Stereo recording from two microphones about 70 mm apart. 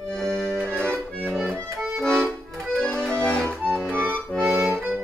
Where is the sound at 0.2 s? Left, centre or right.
Centre.